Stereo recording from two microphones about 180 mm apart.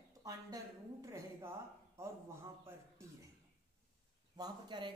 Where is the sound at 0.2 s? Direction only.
20° right (ahead or behind).